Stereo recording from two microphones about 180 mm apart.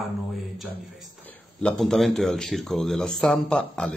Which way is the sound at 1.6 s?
5° left (ahead or behind).